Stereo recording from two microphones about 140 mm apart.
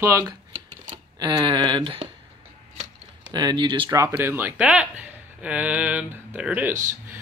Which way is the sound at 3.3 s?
30° right (ahead or behind).